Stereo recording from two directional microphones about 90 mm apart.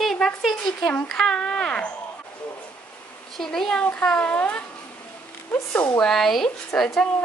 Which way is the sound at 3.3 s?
5° left (ahead or behind).